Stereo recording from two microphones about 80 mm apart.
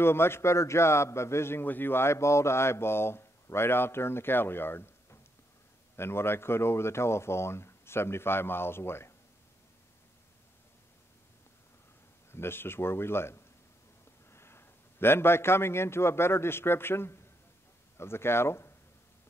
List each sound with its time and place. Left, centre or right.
0.0 s a man's voice: left
12.3 s a man's voice: left